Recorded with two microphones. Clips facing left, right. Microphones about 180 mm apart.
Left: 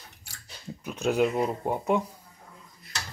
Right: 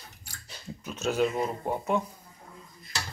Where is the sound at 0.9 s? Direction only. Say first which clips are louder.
Left 2 dB; 15° left (ahead or behind).